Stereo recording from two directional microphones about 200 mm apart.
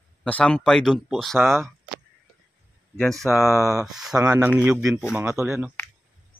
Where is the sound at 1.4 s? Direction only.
10° right (ahead or behind).